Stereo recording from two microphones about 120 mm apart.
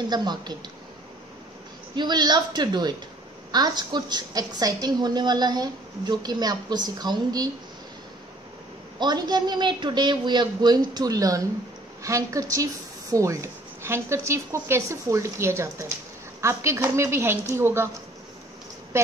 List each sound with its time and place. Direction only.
0.1 s a woman's voice: 35° right (ahead or behind)
2.0 s a woman's voice: 35° right (ahead or behind)
9.0 s a woman's voice: 35° right (ahead or behind)